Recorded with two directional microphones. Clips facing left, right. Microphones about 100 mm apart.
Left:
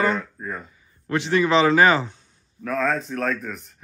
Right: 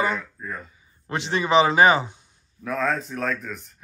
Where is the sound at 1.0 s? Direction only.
20° right (ahead or behind).